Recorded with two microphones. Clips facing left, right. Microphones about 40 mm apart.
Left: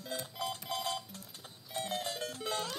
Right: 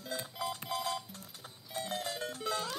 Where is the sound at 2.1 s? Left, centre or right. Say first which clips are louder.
Right 1 dB; right.